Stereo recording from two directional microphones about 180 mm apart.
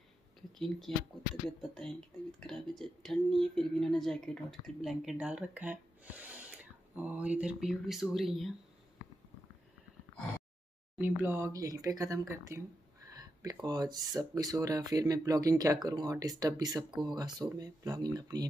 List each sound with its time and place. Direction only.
0.6 s speech: centre (ahead or behind)
11.0 s speech: 10° right (ahead or behind)